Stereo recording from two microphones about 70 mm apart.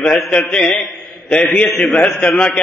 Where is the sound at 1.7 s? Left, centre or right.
Left.